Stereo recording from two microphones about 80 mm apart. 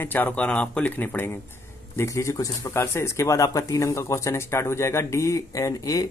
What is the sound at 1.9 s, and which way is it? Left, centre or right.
Speech, left.